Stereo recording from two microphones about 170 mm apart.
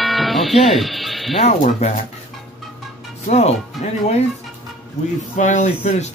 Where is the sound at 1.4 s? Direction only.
40° left (ahead or behind).